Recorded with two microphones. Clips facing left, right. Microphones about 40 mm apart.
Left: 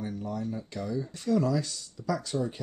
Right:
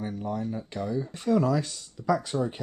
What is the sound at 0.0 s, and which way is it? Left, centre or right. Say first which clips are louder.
Speech: right 2 dB; right.